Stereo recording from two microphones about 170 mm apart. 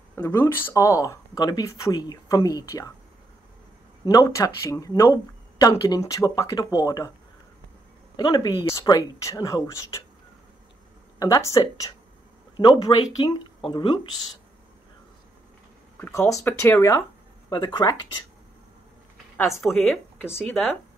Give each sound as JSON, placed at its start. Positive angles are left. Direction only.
{"t": 0.1, "sound": "speech", "side_deg": 15}
{"t": 4.0, "sound": "speech", "side_deg": 20}
{"t": 8.2, "sound": "speech", "side_deg": 25}
{"t": 11.1, "sound": "speech", "side_deg": 20}
{"t": 16.0, "sound": "speech", "side_deg": 15}
{"t": 19.6, "sound": "a woman's voice", "side_deg": 0}